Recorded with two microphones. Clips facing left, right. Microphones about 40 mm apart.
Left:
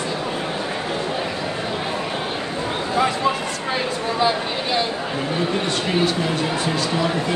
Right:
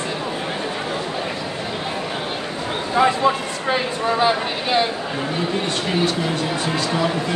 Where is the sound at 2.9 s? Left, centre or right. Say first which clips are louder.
Right 4 dB; centre.